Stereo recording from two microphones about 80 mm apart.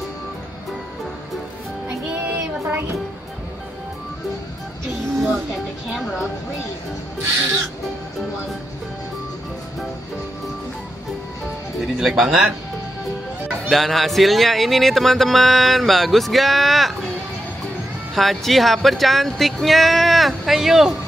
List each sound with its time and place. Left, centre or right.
2.0 s child singing: centre
11.8 s speech: centre
13.7 s speech: centre
18.1 s speech: centre